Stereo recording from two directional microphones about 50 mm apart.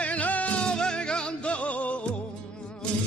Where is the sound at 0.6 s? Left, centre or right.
Centre.